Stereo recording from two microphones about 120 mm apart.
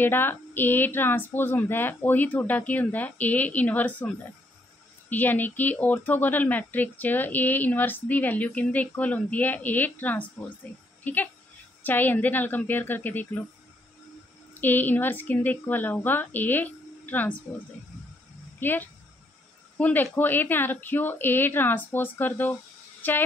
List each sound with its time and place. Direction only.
0.0 s speech: 15° left (ahead or behind)
5.1 s speech: 15° left (ahead or behind)
14.5 s speech: 15° left (ahead or behind)
18.6 s speech: 15° left (ahead or behind)